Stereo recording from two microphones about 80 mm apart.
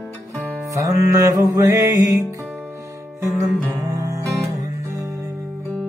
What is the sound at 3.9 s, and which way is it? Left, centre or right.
Music, right.